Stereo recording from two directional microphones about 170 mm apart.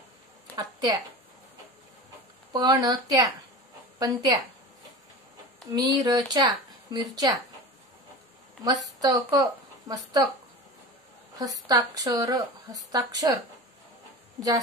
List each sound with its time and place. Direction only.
0.6 s speech: 20° right (ahead or behind)
2.5 s speech: 25° right (ahead or behind)
5.7 s speech: 25° right (ahead or behind)
8.8 s speech: 20° right (ahead or behind)
11.3 s speech: 20° right (ahead or behind)